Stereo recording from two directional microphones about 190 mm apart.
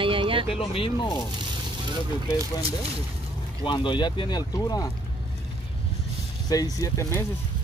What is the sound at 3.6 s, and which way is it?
Speech, 25° left (ahead or behind).